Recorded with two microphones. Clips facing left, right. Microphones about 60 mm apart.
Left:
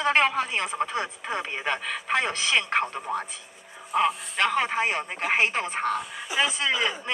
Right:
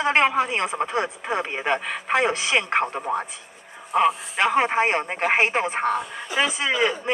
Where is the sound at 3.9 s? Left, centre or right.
Centre.